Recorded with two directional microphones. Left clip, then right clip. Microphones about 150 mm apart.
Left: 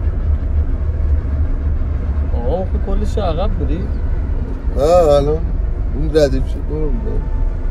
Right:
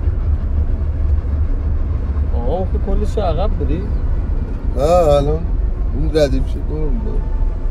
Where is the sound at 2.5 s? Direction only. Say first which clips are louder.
Even; 5° right (ahead or behind).